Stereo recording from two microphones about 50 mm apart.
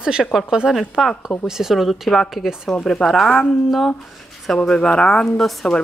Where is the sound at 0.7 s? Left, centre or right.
Centre.